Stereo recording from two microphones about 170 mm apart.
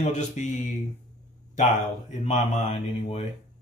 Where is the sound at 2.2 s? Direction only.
40° left (ahead or behind).